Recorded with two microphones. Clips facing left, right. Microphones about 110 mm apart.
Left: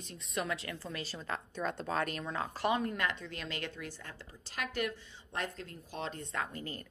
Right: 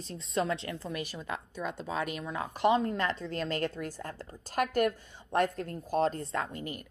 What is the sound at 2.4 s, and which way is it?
A woman's voice, 20° right (ahead or behind).